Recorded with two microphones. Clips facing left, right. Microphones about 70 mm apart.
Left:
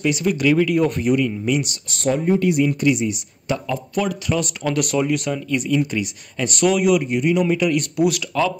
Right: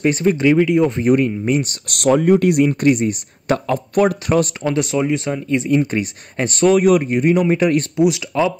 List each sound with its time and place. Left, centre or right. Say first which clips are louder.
0.0 s speech: right 4 dB; right
1.0 s speech: right 4 dB; right
1.9 s speech: right 6 dB; right
4.6 s speech: right 2 dB; right
5.7 s speech: right 3 dB; right
8.0 s speech: right 2 dB; centre